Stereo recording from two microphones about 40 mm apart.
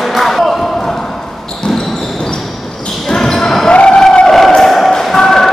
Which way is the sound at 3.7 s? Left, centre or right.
Left.